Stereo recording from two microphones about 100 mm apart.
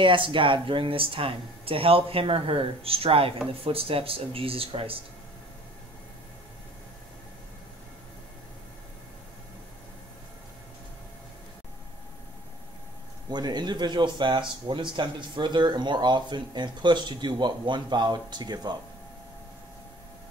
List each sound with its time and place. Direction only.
0.0 s speech: 55° right (ahead or behind)
13.3 s speech: 45° right (ahead or behind)